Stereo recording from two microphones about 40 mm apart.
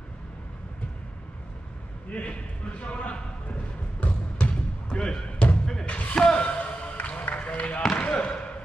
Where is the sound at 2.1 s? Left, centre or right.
Left.